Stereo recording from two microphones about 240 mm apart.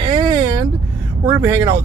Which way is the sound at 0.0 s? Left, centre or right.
Centre.